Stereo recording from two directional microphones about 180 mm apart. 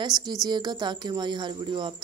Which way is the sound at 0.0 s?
25° right (ahead or behind).